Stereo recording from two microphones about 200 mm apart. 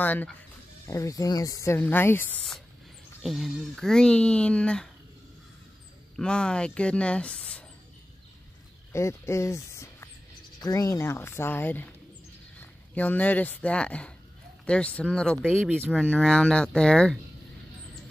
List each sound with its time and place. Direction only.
0.0 s speech: 10° left (ahead or behind)
6.1 s speech: 5° left (ahead or behind)
8.9 s speech: 15° left (ahead or behind)